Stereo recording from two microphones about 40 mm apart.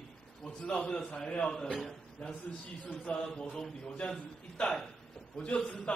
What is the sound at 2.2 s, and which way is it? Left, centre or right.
Speech, left.